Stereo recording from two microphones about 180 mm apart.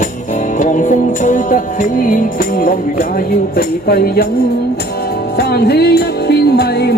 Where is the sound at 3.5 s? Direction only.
60° left (ahead or behind).